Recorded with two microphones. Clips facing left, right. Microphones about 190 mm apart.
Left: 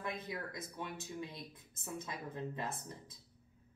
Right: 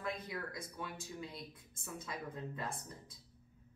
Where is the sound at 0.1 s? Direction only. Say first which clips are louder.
Even; 25° left (ahead or behind).